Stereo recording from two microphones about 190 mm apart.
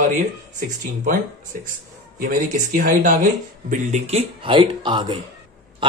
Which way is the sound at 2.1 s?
45° right (ahead or behind).